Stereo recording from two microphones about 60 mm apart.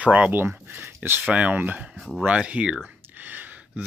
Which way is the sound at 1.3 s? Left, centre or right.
Right.